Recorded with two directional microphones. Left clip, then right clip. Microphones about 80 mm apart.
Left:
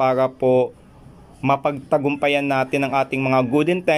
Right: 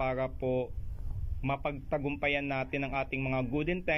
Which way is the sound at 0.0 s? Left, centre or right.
Left.